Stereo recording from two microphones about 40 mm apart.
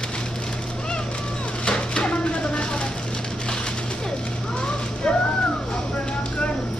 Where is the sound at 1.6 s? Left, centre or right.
Left.